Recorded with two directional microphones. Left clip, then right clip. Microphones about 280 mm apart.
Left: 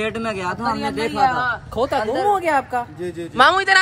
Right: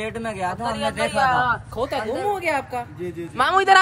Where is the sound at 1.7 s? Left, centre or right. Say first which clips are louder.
Left 5 dB; centre.